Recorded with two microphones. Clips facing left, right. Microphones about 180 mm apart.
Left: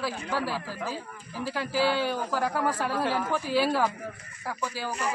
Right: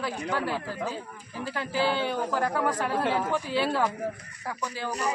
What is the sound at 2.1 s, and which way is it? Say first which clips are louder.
Speech: right 1 dB; 5° left (ahead or behind).